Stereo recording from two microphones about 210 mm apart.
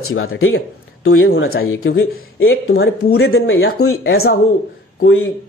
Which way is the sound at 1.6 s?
70° left (ahead or behind).